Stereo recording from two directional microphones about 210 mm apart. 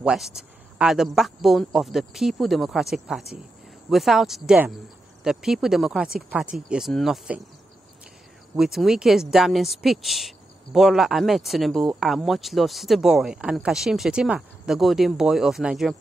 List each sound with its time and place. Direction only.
0.0 s speech: 5° right (ahead or behind)
8.5 s speech: centre (ahead or behind)